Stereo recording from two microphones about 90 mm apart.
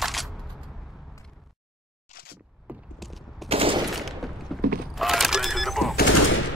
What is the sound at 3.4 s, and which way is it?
Machine gun, 85° right.